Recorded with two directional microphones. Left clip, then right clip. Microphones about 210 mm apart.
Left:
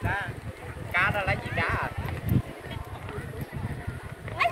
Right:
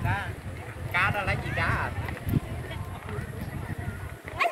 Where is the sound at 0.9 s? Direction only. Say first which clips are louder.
Left 1 dB; 50° right (ahead or behind).